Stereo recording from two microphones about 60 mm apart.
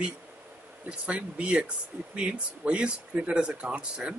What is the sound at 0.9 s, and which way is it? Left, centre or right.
Speech, centre.